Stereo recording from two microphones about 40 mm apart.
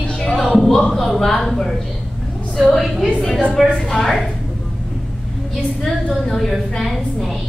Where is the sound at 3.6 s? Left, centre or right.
Centre.